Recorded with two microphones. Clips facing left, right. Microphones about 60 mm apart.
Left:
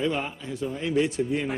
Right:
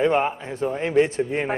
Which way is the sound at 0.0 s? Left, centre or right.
Right.